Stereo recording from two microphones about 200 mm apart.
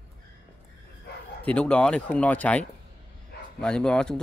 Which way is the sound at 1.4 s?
5° left (ahead or behind).